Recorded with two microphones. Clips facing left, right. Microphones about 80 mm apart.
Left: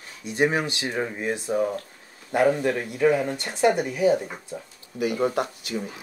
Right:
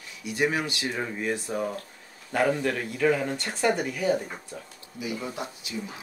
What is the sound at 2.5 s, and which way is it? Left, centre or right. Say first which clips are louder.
Speech: left 3 dB; left.